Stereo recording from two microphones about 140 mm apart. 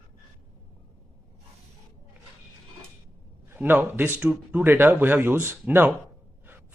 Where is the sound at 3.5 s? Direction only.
15° right (ahead or behind).